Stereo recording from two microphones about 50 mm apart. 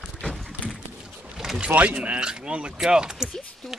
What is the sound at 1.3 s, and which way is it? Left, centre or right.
Boat, centre.